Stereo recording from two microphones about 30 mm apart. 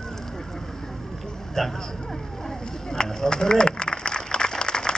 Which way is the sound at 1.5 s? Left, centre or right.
Centre.